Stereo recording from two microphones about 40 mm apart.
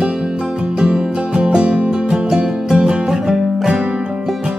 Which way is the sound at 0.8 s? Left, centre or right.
Right.